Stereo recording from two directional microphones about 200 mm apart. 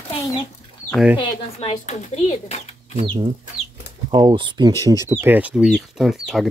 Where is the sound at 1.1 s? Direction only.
35° left (ahead or behind).